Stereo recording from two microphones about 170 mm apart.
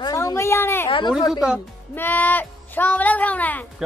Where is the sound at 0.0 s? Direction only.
20° left (ahead or behind).